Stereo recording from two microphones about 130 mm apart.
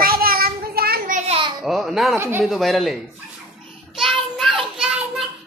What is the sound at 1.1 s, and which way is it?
Speech, 80° right.